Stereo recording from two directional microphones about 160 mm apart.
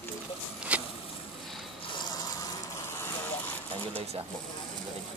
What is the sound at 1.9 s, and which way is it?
Water, 25° left (ahead or behind).